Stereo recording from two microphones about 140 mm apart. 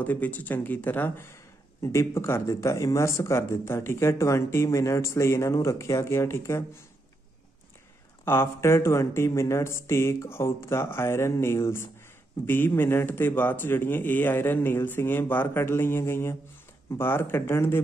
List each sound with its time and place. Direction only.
0.0 s speech: 10° left (ahead or behind)
8.3 s speech: 20° left (ahead or behind)